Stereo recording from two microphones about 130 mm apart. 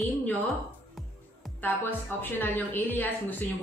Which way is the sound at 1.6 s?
15° left (ahead or behind).